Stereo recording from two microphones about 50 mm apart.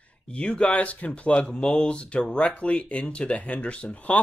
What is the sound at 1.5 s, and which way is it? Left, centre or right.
Speech, centre.